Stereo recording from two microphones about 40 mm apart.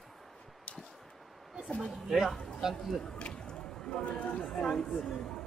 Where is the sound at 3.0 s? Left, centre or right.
Left.